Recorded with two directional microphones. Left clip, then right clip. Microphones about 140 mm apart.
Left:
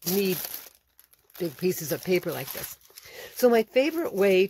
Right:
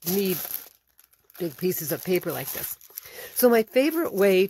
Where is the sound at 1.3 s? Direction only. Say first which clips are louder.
Even; 30° right (ahead or behind).